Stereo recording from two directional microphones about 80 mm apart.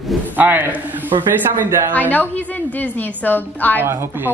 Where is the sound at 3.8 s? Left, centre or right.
Right.